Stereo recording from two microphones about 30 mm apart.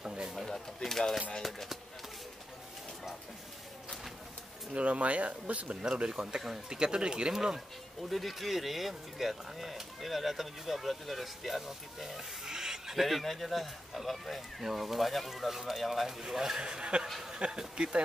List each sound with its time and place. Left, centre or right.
0.0 s a sound: right
0.8 s a sound: centre
1.4 s speech: centre
4.7 s speech: right
6.0 s speech: right
8.1 s speech: centre
12.4 s a sound: centre
13.0 s speech: centre
14.6 s speech: centre
16.2 s speech: centre
16.6 s speech: right